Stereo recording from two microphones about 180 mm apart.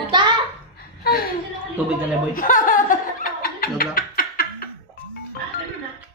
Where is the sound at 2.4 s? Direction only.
50° left (ahead or behind).